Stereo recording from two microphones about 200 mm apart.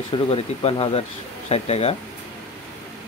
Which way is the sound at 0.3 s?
30° left (ahead or behind).